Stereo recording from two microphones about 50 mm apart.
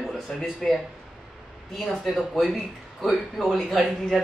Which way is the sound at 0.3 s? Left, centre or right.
Centre.